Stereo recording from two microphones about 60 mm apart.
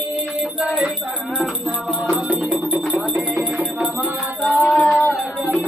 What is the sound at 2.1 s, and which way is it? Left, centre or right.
Music, right.